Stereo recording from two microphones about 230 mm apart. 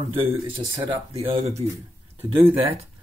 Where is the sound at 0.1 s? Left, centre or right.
Right.